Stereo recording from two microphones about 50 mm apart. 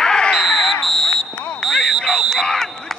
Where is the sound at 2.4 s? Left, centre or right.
Centre.